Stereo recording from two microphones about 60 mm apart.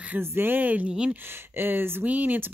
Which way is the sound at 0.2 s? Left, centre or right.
Right.